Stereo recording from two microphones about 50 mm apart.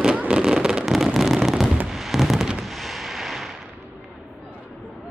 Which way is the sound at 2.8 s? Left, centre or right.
Centre.